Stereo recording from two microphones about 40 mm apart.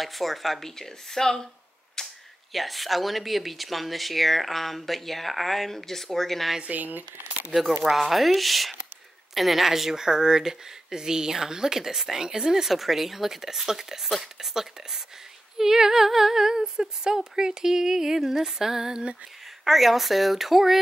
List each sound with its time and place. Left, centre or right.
0.0 s speech: centre
2.0 s a sound: centre
2.5 s speech: centre
6.6 s speech: right
7.8 s speech: centre